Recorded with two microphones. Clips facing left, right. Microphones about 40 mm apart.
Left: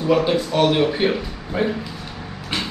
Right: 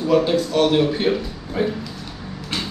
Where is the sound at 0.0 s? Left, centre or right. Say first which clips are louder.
Right 1 dB; centre.